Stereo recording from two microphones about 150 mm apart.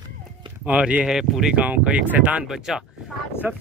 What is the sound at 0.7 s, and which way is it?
Speech, 10° right (ahead or behind).